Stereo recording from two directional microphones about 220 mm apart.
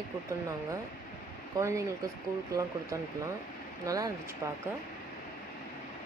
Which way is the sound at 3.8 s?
15° right (ahead or behind).